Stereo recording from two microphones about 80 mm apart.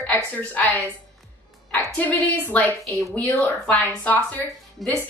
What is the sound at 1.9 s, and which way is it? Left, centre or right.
Speech, centre.